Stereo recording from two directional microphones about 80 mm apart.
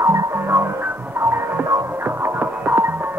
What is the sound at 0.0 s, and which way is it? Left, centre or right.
Music, right.